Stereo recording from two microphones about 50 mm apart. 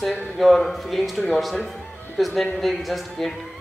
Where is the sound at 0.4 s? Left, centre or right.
Centre.